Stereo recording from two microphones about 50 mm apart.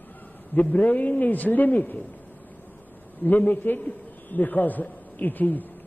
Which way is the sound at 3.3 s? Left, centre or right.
Left.